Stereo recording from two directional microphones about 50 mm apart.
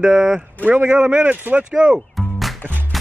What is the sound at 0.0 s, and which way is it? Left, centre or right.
A man's voice, centre.